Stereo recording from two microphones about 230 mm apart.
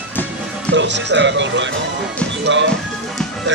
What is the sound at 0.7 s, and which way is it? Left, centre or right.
Music, right.